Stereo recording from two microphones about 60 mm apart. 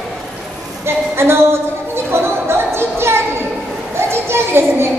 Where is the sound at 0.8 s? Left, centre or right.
Right.